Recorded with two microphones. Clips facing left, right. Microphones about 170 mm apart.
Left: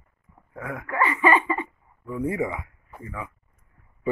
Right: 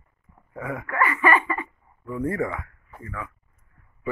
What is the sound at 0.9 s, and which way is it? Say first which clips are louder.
Laughter: left 1 dB; 20° left (ahead or behind).